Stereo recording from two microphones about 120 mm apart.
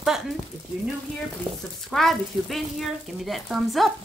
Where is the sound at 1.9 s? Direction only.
Centre (ahead or behind).